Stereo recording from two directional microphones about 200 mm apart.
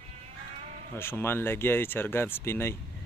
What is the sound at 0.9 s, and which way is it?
Speech, 10° left (ahead or behind).